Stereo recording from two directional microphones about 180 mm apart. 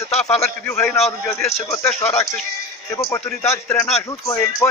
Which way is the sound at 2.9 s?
15° left (ahead or behind).